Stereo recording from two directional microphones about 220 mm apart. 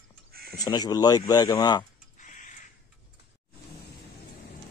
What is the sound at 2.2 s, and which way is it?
Crow, 35° left (ahead or behind).